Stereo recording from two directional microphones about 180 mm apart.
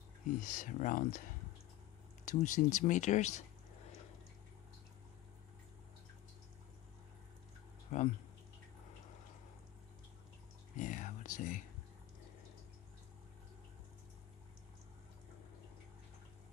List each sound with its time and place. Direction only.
0.4 s speech: 45° left (ahead or behind)
2.2 s speech: 45° left (ahead or behind)
7.9 s speech: 35° left (ahead or behind)
10.8 s whispering: 45° left (ahead or behind)